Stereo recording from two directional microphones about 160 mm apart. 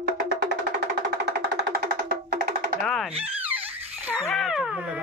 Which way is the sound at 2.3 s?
70° right (ahead or behind).